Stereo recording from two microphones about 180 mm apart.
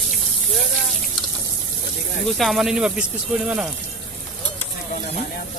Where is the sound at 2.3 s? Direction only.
Centre (ahead or behind).